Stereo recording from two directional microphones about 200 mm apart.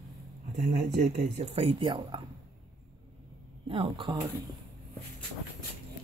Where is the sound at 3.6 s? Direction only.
25° right (ahead or behind).